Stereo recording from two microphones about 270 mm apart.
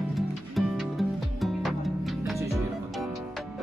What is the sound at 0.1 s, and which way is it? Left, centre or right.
Music, centre.